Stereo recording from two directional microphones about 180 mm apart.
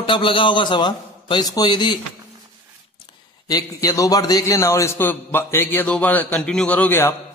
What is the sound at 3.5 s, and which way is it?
A man's voice, 20° left (ahead or behind).